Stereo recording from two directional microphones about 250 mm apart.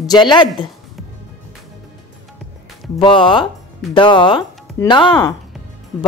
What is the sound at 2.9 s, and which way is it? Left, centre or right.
Speech, centre.